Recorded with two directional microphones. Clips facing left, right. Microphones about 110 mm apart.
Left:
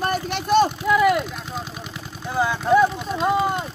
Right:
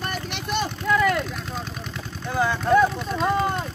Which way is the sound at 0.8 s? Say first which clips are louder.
Left 3 dB; 10° left (ahead or behind).